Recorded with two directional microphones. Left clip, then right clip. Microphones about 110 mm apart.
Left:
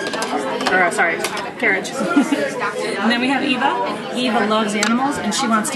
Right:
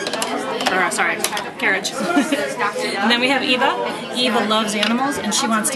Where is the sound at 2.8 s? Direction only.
20° right (ahead or behind).